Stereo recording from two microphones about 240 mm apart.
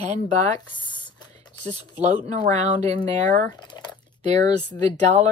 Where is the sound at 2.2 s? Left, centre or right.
Right.